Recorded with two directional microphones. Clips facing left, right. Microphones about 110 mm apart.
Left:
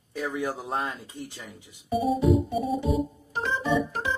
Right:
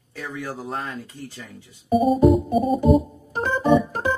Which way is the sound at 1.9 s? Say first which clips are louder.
Right 6 dB; 50° right (ahead or behind).